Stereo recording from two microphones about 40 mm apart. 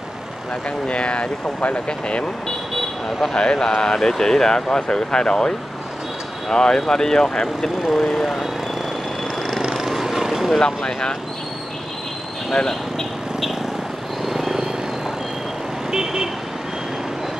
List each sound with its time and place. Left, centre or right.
0.7 s speech: left
3.3 s speech: centre
6.5 s speech: centre
9.6 s vehicle: centre
10.6 s speech: centre
12.4 s speech: centre
14.2 s vehicle: centre
15.9 s speech: centre